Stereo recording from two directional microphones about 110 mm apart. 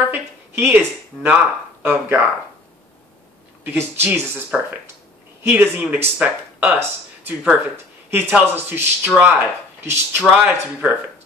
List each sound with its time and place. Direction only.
0.1 s speech: 20° right (ahead or behind)
3.6 s speech: 20° right (ahead or behind)
5.4 s speech: 20° right (ahead or behind)